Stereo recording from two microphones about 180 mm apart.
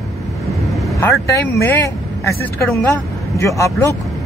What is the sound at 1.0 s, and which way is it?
Speech, 15° left (ahead or behind).